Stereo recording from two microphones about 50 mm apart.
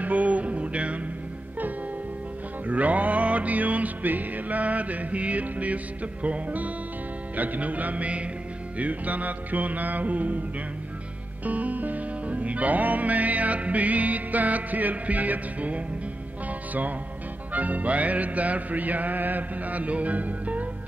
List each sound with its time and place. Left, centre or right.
0.0 s music: right
2.6 s music: right
11.4 s music: right
17.5 s music: right